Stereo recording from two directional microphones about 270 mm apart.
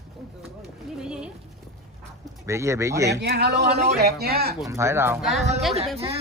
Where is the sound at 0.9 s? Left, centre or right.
Centre.